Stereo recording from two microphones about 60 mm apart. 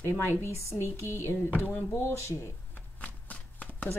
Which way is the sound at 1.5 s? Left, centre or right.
Left.